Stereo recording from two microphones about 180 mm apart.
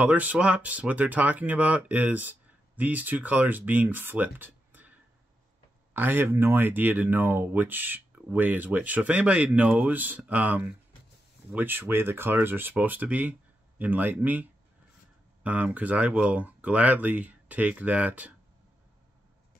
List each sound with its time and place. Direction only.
0.0 s speech: 10° right (ahead or behind)
5.9 s speech: 10° right (ahead or behind)